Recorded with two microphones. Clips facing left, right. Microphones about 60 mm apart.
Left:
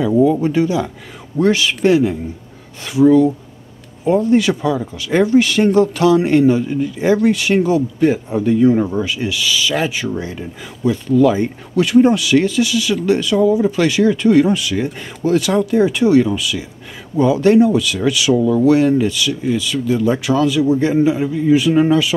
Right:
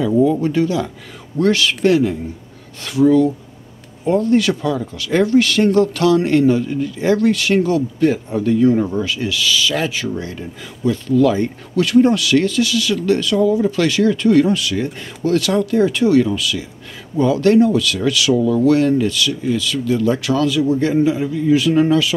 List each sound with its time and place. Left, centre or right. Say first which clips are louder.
0.2 s speech: left 2 dB; centre